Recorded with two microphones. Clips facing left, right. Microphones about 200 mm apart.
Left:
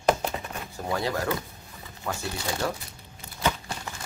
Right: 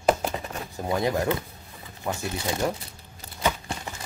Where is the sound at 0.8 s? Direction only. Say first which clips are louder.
Right 3 dB; 20° right (ahead or behind).